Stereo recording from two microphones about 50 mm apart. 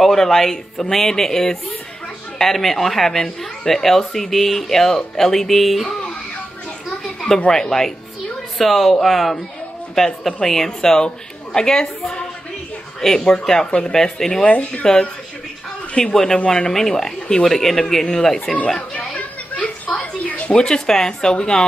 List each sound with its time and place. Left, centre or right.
0.0 s speech: centre
7.3 s speech: centre
13.7 s speech: left
13.9 s speech: centre
14.4 s speech: left
15.9 s speech: centre
18.8 s a sound: left
20.5 s speech: centre